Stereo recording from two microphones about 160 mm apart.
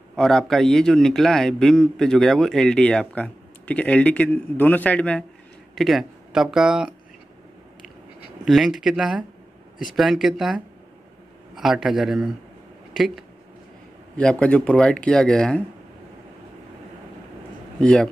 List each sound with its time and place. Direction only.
0.1 s a man's voice: 5° left (ahead or behind)
8.5 s a man's voice: centre (ahead or behind)
17.7 s a man's voice: 5° left (ahead or behind)